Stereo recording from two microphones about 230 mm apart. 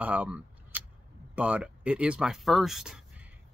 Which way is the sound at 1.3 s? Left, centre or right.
Centre.